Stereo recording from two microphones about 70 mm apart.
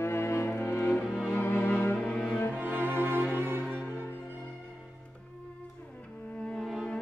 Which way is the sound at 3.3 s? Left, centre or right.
Right.